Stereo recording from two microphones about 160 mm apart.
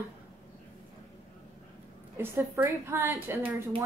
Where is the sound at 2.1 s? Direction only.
15° right (ahead or behind).